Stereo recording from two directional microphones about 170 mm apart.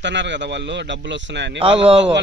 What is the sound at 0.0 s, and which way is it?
Speech, 90° right.